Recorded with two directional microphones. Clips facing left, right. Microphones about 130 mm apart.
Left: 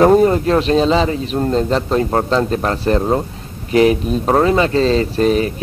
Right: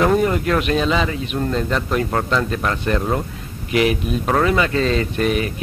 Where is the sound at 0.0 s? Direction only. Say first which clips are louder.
Left 6 dB; 35° left (ahead or behind).